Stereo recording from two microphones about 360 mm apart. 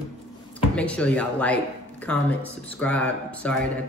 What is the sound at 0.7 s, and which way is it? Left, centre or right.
Speech, centre.